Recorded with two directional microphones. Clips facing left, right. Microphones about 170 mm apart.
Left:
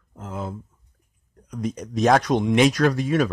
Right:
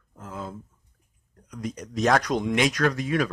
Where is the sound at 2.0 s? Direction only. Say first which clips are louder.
Left 4 dB; 25° left (ahead or behind).